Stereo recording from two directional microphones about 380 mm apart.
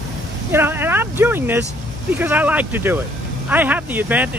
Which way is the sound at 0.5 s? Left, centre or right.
Centre.